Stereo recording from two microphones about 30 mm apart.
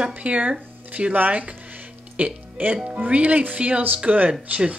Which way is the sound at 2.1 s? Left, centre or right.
Right.